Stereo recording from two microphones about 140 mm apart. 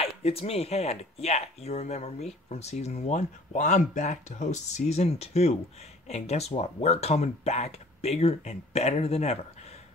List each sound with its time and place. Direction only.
0.0 s speech: 45° left (ahead or behind)